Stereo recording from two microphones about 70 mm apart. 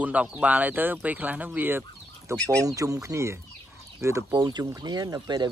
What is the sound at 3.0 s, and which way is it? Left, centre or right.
Speech, right.